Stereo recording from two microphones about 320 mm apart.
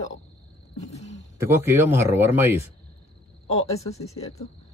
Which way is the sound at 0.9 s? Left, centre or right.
Left.